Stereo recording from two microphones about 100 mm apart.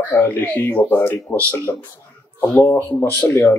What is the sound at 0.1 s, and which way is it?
Speech, 15° left (ahead or behind).